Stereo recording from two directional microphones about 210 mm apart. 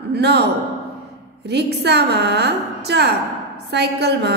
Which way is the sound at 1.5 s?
50° right (ahead or behind).